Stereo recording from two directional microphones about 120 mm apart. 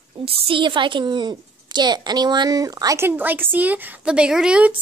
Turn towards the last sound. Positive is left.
turn(degrees=-10)  # may be behind; listen again after turning